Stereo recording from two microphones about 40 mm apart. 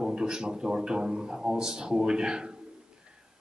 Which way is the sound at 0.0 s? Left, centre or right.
Centre.